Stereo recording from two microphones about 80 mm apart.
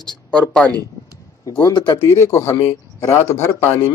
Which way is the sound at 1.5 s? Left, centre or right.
Left.